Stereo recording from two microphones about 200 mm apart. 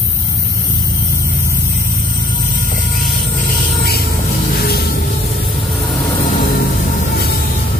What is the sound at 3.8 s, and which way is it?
Music, 50° left (ahead or behind).